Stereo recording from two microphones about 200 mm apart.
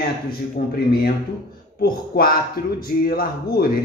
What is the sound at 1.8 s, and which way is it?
A man's voice, 45° left (ahead or behind).